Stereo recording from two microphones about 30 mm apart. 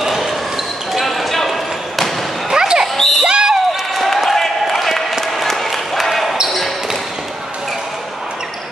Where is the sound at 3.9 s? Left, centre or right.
Centre.